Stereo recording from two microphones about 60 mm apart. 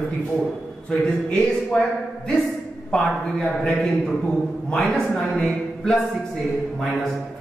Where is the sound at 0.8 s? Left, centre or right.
Centre.